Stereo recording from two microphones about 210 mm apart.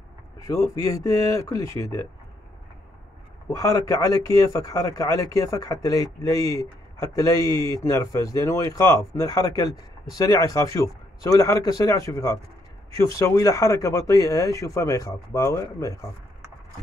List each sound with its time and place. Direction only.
0.4 s speech: 15° left (ahead or behind)
3.5 s speech: 15° left (ahead or behind)